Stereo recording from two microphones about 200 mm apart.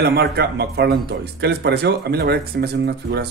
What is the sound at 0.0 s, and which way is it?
A man's voice, 55° right (ahead or behind).